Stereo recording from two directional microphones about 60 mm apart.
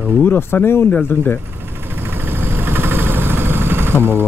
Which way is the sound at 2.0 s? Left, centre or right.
Right.